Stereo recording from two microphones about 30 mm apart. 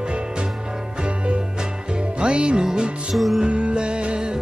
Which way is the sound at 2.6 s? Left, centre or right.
Right.